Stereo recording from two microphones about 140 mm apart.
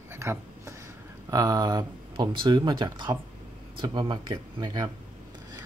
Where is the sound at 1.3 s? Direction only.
25° right (ahead or behind).